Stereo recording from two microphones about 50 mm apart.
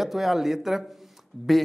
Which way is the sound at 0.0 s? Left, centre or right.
Centre.